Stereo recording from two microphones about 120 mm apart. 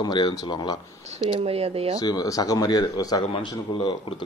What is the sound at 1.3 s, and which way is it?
Speech, 55° right (ahead or behind).